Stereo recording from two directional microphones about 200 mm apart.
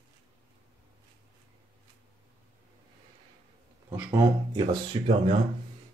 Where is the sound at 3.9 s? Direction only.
15° right (ahead or behind).